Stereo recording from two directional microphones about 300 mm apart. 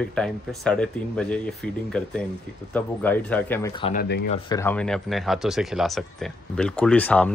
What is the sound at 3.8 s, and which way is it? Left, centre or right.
Speech, left.